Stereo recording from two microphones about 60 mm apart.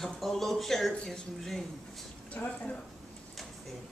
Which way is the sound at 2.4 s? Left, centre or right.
Left.